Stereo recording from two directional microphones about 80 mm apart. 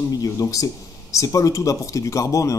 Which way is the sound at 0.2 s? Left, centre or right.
Left.